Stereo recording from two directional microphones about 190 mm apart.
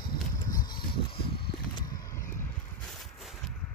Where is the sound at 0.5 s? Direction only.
20° left (ahead or behind).